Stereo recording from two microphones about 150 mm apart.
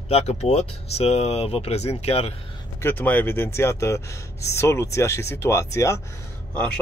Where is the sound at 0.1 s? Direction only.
45° left (ahead or behind).